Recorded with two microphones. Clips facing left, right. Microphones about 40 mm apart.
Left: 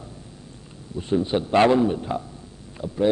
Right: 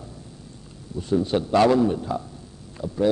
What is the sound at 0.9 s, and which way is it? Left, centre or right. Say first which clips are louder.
A man's voice: even; left.